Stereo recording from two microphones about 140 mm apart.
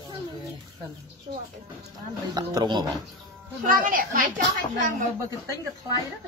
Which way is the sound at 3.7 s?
80° right.